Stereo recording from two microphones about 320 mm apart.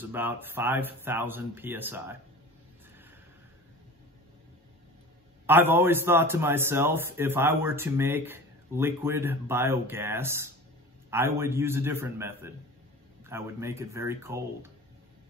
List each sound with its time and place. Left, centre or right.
0.0 s a man's voice: centre
5.5 s a man's voice: centre